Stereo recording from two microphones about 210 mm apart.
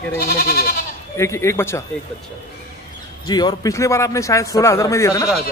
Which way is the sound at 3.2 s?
20° left (ahead or behind).